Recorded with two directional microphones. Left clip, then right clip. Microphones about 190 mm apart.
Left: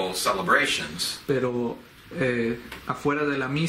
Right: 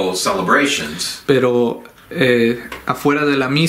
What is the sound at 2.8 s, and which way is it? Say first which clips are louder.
Speech: right 9 dB; 30° right (ahead or behind).